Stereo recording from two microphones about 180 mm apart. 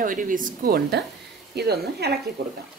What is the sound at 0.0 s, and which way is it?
A woman's voice, 50° right (ahead or behind).